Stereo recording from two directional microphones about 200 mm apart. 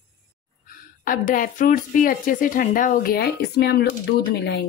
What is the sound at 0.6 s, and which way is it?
A woman's voice, 45° left (ahead or behind).